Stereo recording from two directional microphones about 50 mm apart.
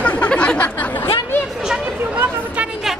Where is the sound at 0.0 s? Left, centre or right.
Left.